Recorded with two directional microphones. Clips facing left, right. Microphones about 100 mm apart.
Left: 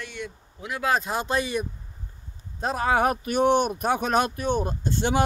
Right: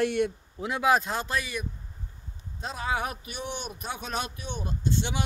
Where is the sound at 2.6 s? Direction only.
50° left (ahead or behind).